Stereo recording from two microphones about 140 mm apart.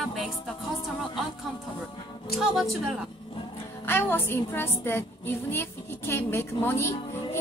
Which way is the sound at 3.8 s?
15° left (ahead or behind).